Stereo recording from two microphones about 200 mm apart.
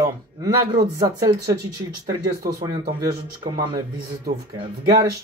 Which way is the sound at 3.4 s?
15° right (ahead or behind).